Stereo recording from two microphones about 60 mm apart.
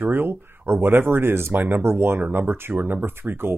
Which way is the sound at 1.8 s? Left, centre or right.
Right.